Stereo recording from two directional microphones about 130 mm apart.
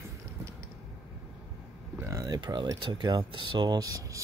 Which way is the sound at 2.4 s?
35° right (ahead or behind).